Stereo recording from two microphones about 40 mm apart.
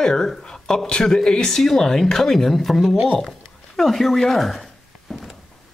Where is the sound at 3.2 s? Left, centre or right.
Centre.